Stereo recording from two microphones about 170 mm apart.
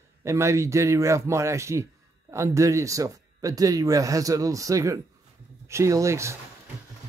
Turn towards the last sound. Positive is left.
turn(degrees=-15)  # may be behind; listen again after turning